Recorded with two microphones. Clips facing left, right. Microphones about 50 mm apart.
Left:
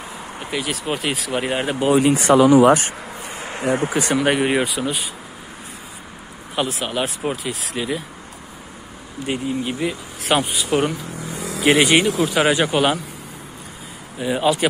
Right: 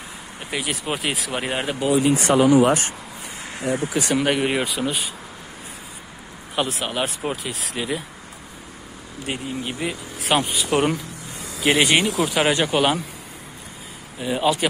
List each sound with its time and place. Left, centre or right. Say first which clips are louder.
0.5 s speech: left 2 dB; centre
2.0 s speech: left 3 dB; left
3.3 s a sound: left 4 dB; left
3.6 s speech: left 4 dB; left
3.9 s speech: left 2 dB; left
4.2 s speech: left 4 dB; centre
6.5 s speech: left 1 dB; centre
9.2 s speech: left 5 dB; centre
14.2 s speech: left 2 dB; centre